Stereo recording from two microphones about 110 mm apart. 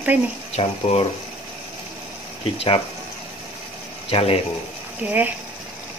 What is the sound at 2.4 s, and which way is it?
Speech, 55° left (ahead or behind).